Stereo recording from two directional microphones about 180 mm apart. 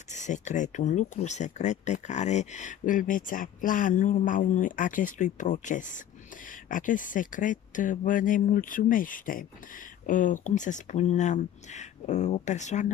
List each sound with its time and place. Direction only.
0.1 s speech: 40° left (ahead or behind)